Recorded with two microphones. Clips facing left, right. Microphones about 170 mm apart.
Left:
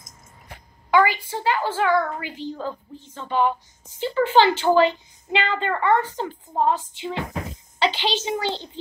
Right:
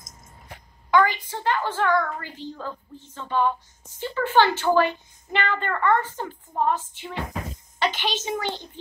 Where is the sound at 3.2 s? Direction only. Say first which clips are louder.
Left 2 dB; 15° left (ahead or behind).